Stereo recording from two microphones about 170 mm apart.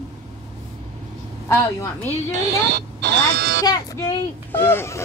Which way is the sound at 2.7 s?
80° right.